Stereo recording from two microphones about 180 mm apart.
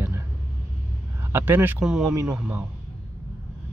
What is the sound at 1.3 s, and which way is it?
Speech, 10° right (ahead or behind).